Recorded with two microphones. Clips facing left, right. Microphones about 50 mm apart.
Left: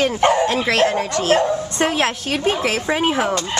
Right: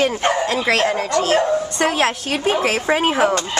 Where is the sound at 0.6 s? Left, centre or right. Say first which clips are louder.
Right 2 dB; right.